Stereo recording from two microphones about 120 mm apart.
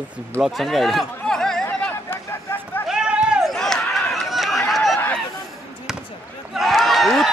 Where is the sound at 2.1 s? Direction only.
20° left (ahead or behind).